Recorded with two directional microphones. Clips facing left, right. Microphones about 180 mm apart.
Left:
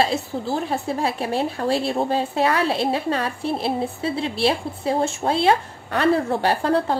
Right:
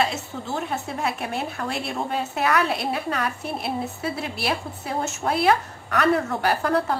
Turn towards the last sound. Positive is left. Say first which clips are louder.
# left 2 dB
turn(degrees=30)  # may be behind; listen again after turning